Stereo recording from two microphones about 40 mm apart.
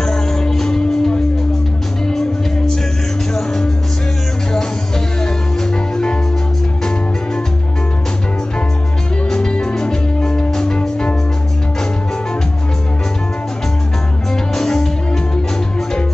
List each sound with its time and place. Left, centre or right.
0.0 s music: centre
5.2 s music: centre
9.3 s music: centre
14.5 s music: centre